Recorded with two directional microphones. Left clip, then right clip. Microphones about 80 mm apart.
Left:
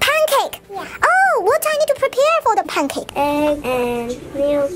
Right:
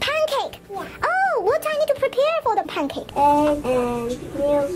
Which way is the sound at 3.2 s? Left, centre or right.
Left.